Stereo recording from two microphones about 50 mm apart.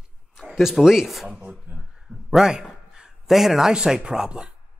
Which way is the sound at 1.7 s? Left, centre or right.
Centre.